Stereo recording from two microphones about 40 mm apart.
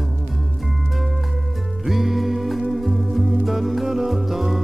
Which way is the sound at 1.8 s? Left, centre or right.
Centre.